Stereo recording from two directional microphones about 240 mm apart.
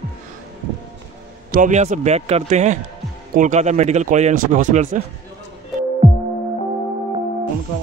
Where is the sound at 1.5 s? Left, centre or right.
Right.